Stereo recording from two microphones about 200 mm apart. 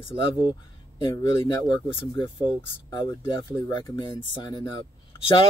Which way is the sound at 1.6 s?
25° left (ahead or behind).